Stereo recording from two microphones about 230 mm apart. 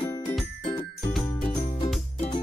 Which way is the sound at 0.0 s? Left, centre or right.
Centre.